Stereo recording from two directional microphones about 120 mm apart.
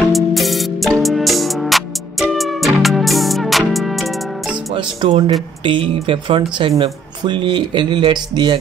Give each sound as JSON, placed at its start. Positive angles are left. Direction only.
{"t": 0.1, "sound": "music", "side_deg": 0}
{"t": 4.7, "sound": "speech", "side_deg": -45}